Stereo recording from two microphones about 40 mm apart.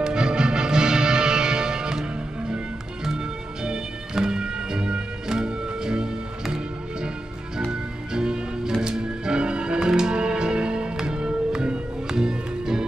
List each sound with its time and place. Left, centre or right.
0.0 s music: right
7.7 s music: centre